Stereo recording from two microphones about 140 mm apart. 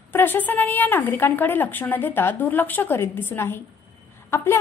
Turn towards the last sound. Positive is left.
turn(degrees=20)  # may be behind; listen again after turning